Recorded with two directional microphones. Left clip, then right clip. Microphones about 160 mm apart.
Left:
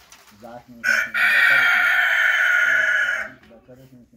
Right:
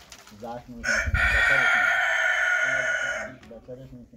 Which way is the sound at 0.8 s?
90° right.